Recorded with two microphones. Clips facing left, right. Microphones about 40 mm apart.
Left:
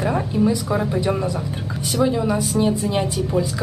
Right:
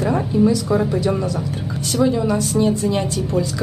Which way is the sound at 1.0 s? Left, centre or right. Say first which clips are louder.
Right 1 dB; centre.